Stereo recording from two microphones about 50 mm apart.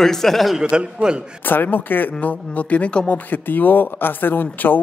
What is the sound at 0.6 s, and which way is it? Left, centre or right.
Speech, centre.